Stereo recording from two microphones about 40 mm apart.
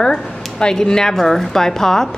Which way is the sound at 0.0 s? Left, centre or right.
Centre.